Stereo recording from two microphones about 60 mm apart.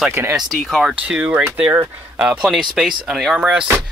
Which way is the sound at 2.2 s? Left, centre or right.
Centre.